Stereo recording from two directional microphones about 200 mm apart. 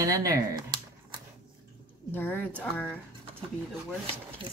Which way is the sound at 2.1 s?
10° left (ahead or behind).